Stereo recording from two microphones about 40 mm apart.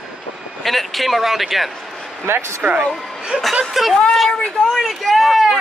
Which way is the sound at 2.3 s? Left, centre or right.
Right.